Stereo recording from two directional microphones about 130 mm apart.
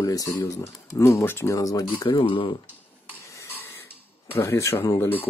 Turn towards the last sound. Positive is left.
turn(degrees=15)  # may be behind; listen again after turning